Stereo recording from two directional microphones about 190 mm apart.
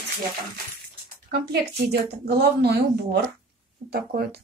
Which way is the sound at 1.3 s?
55° right (ahead or behind).